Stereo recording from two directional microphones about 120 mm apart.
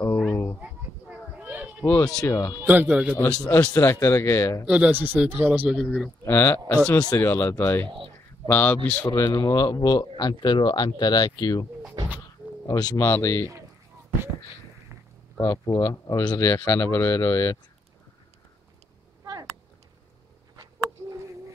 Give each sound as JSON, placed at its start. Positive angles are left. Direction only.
{"t": 0.3, "sound": "a sound", "side_deg": 20}
{"t": 1.4, "sound": "a sound", "side_deg": -10}
{"t": 1.8, "sound": "speech", "side_deg": 15}
{"t": 2.6, "sound": "speech", "side_deg": -15}
{"t": 3.3, "sound": "speech", "side_deg": 5}
{"t": 3.5, "sound": "speech", "side_deg": 20}
{"t": 4.6, "sound": "speech", "side_deg": -10}
{"t": 6.2, "sound": "speech", "side_deg": 20}
{"t": 7.0, "sound": "a man's voice", "side_deg": 30}
{"t": 7.2, "sound": "speech", "side_deg": 20}
{"t": 9.1, "sound": "a man's voice", "side_deg": 30}
{"t": 12.6, "sound": "speech", "side_deg": 30}
{"t": 15.3, "sound": "speech", "side_deg": 30}